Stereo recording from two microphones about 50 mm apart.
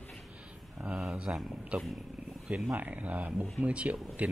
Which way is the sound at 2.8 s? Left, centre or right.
Right.